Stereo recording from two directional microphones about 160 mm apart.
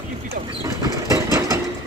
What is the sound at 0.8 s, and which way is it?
Vehicle, 20° right (ahead or behind).